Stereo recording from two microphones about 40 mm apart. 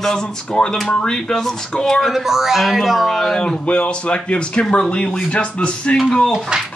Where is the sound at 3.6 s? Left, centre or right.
Left.